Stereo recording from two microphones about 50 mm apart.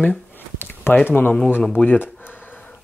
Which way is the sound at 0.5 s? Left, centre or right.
Left.